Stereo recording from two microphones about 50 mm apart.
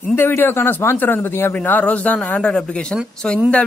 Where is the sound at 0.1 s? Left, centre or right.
Left.